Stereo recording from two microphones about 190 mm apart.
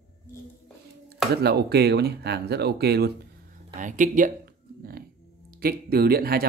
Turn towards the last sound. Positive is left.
turn(degrees=-55)  # may be behind; listen again after turning